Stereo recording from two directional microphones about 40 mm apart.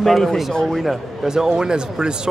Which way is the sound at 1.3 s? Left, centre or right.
Centre.